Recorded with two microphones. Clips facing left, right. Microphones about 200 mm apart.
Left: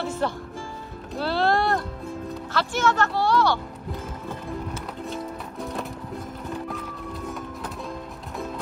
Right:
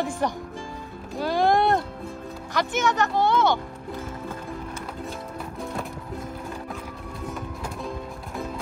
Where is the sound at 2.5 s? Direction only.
15° right (ahead or behind).